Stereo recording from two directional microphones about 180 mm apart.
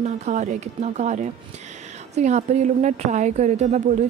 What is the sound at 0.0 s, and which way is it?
A woman's voice, 40° right (ahead or behind).